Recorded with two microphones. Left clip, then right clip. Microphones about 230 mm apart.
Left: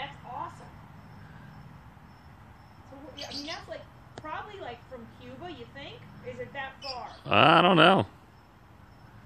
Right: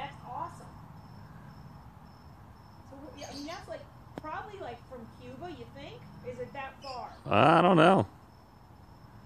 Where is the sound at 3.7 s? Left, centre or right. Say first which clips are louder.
Left 1 dB; centre.